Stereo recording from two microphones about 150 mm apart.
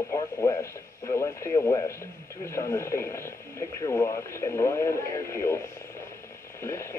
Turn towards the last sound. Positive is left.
turn(degrees=15)  # may be behind; listen again after turning